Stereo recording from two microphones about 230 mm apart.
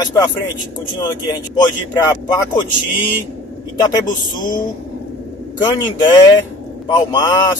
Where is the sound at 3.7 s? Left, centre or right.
Centre.